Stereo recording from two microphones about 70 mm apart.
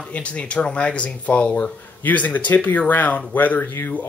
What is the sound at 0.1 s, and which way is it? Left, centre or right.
Speech, centre.